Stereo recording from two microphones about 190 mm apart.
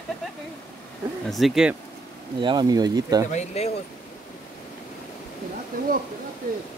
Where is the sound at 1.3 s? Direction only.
Centre (ahead or behind).